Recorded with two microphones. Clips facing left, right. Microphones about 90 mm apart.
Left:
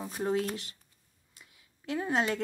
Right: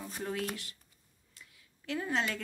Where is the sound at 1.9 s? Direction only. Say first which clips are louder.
Left 4 dB; 20° left (ahead or behind).